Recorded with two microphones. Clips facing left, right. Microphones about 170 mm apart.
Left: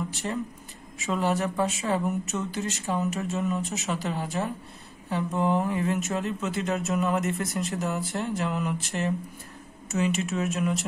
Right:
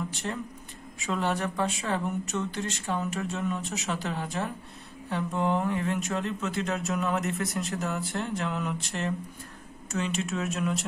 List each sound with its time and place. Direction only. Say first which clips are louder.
0.1 s speech: left 3 dB; centre (ahead or behind)